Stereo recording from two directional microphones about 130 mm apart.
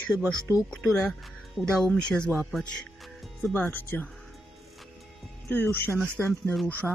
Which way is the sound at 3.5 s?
15° left (ahead or behind).